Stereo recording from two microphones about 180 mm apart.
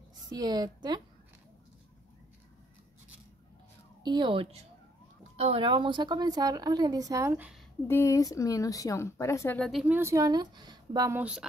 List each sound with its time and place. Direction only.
0.3 s a woman's voice: 20° right (ahead or behind)
4.0 s a woman's voice: 25° right (ahead or behind)
7.9 s speech: 15° left (ahead or behind)
9.6 s a woman's voice: centre (ahead or behind)
9.9 s a woman's voice: 15° right (ahead or behind)